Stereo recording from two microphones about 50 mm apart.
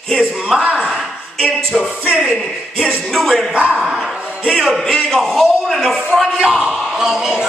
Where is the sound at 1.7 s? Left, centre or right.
Centre.